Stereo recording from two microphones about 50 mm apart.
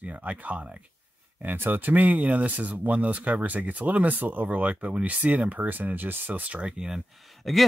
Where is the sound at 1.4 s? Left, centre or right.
Right.